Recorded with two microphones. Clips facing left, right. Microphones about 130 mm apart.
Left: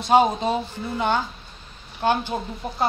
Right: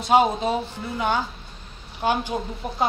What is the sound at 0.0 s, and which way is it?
A woman's voice, 5° right (ahead or behind).